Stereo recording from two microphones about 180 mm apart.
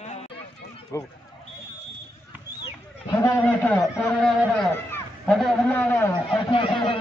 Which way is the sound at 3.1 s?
15° left (ahead or behind).